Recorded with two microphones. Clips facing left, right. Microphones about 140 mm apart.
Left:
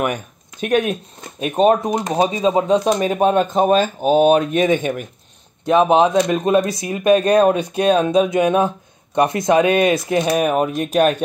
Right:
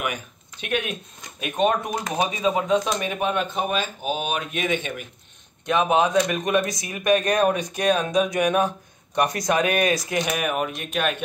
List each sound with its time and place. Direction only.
0.0 s speech: 45° left (ahead or behind)
5.7 s speech: 30° left (ahead or behind)